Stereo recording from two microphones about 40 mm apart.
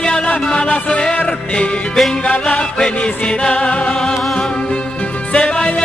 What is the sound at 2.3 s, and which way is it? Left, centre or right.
Music, left.